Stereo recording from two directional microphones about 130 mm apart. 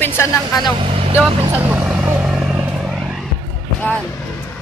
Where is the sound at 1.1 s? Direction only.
10° right (ahead or behind).